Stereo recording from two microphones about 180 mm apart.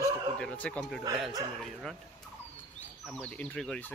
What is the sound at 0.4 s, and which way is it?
Speech, 5° left (ahead or behind).